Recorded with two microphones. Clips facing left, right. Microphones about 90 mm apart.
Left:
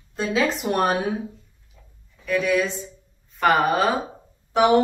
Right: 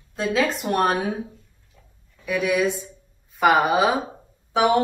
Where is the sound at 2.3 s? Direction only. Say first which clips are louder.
Even; 10° right (ahead or behind).